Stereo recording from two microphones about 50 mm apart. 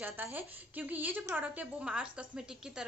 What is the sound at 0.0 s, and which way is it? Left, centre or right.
A woman's voice, right.